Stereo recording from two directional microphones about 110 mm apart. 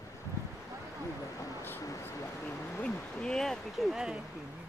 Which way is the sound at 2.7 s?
10° left (ahead or behind).